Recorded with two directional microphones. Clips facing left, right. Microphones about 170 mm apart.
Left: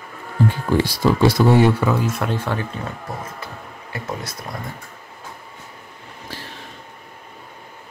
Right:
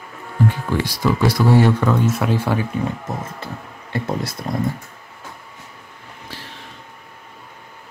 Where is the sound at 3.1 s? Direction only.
25° right (ahead or behind).